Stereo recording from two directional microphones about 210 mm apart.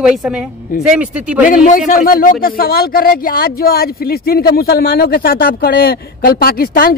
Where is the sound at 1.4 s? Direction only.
40° left (ahead or behind).